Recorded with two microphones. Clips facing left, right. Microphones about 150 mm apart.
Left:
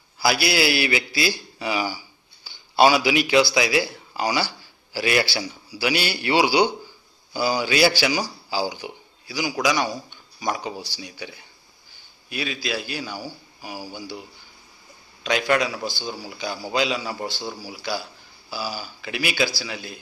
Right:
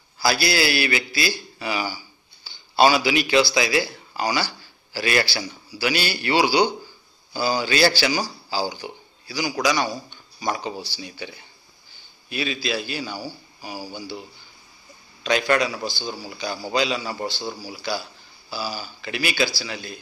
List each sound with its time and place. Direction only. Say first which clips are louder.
0.2 s a man's voice: even; 15° left (ahead or behind)
15.2 s a man's voice: right 1 dB; 5° left (ahead or behind)